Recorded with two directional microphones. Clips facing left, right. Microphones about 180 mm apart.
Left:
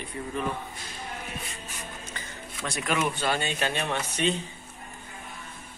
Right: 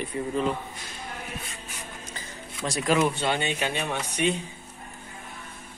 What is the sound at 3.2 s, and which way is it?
A man's voice, 15° right (ahead or behind).